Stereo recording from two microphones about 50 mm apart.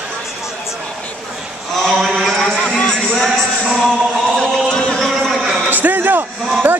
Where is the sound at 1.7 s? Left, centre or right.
Centre.